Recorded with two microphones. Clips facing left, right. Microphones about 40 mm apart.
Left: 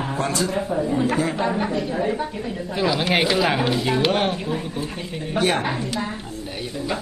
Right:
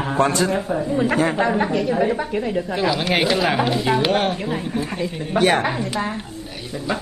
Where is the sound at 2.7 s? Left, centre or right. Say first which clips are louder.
Left 1 dB; centre.